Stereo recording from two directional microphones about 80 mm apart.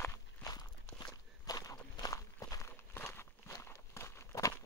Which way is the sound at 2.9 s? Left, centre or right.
Left.